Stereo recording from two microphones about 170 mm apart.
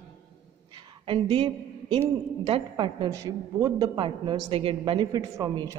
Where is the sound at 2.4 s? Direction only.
30° right (ahead or behind).